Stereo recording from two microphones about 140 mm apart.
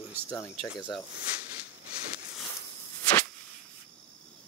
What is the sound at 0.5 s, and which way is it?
Speech, centre (ahead or behind).